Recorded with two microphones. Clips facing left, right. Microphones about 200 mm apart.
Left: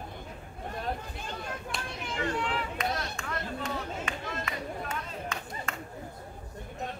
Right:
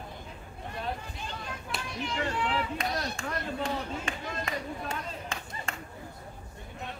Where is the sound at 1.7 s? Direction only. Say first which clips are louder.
Even; centre (ahead or behind).